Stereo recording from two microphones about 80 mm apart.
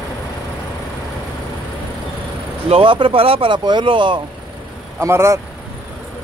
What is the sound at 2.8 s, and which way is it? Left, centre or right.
Speech, right.